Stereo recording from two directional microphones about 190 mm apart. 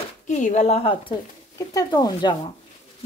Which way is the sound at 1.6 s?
20° left (ahead or behind).